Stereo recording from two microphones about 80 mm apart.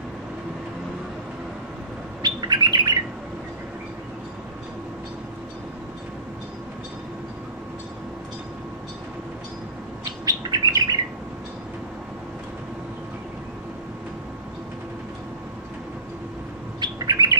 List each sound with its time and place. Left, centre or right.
2.2 s bird: right
10.2 s bird: right
16.8 s bird: right